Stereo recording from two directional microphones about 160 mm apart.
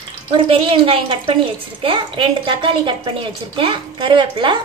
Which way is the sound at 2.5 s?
30° right (ahead or behind).